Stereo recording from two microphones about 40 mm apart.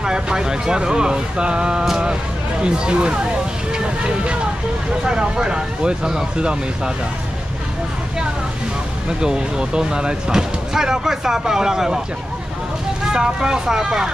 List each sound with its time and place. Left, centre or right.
0.0 s speech: centre
3.7 s vehicle: right
5.0 s speech: right
9.2 s speech: centre
13.1 s speech: centre